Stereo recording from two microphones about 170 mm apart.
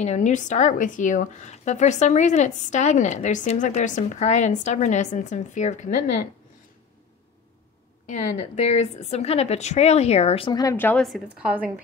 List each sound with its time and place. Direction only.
0.0 s speech: 45° left (ahead or behind)
8.5 s speech: 45° left (ahead or behind)
10.6 s a woman's voice: 15° left (ahead or behind)
11.0 s a woman's voice: centre (ahead or behind)